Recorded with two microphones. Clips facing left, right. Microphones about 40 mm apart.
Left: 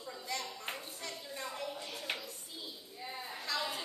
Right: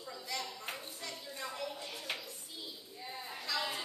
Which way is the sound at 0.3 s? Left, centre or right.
Left.